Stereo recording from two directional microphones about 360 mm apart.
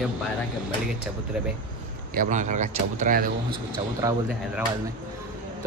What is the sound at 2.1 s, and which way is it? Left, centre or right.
Speech, right.